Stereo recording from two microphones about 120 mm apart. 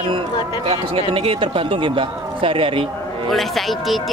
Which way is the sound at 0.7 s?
50° right (ahead or behind).